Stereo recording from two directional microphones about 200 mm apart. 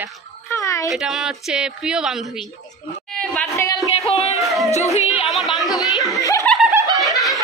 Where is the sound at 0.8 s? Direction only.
Centre (ahead or behind).